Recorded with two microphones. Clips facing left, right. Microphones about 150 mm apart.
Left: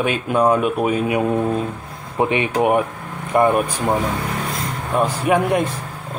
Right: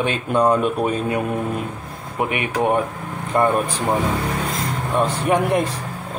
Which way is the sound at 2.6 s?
10° left (ahead or behind).